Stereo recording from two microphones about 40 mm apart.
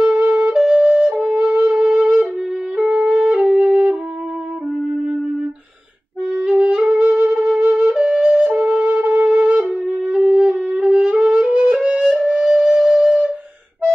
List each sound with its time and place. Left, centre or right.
0.0 s flute: right
2.9 s music: right
3.4 s flute: centre
6.3 s music: centre
7.8 s flute: right
10.0 s wind instrument: right
11.1 s music: right
12.8 s flute: centre